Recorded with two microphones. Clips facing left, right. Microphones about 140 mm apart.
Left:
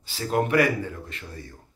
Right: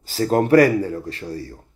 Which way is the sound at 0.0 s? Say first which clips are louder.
Right 6 dB; 40° right (ahead or behind).